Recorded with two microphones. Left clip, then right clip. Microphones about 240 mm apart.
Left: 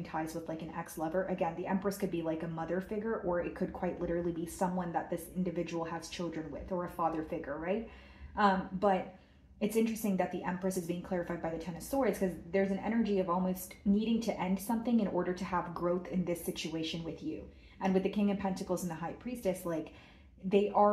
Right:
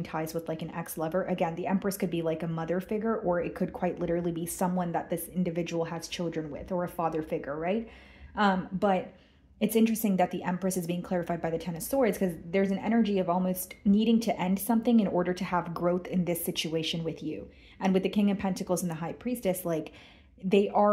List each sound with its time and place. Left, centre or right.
0.0 s a woman's voice: right